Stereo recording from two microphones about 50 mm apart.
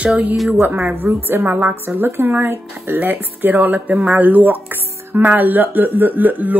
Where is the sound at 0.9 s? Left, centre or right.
Right.